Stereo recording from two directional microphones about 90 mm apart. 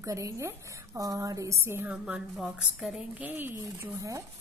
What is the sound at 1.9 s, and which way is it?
A woman's voice, 10° right (ahead or behind).